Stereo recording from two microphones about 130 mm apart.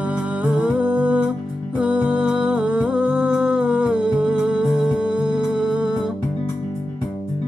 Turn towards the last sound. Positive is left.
turn(degrees=-5)  # may be behind; listen again after turning